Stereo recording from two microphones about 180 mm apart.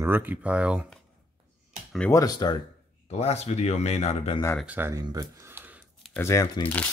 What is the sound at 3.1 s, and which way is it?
Speech, 35° left (ahead or behind).